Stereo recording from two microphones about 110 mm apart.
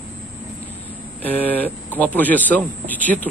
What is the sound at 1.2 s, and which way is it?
A man's voice, 15° left (ahead or behind).